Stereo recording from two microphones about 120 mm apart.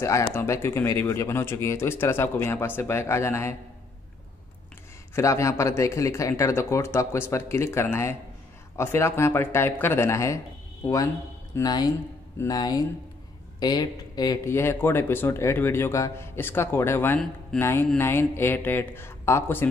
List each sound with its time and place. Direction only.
0.0 s speech: 25° left (ahead or behind)
5.1 s speech: 25° left (ahead or behind)
11.6 s speech: 35° left (ahead or behind)
14.5 s speech: 20° left (ahead or behind)